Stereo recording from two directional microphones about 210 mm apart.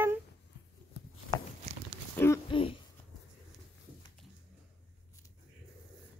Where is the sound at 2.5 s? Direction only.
25° left (ahead or behind).